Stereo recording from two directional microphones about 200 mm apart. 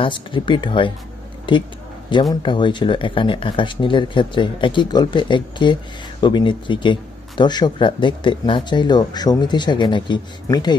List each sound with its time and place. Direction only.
0.0 s speech: 25° left (ahead or behind)
2.4 s speech: 25° left (ahead or behind)